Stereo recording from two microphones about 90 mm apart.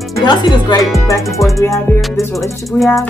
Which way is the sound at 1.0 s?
35° left (ahead or behind).